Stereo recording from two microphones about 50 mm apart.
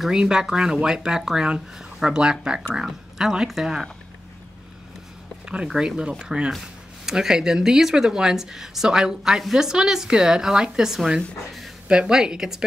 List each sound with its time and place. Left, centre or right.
0.1 s speech: centre
5.4 s a sound: centre
5.7 s speech: centre